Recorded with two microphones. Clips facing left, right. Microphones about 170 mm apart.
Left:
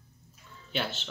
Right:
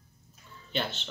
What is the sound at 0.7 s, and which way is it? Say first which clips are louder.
Speech: even; 5° left (ahead or behind).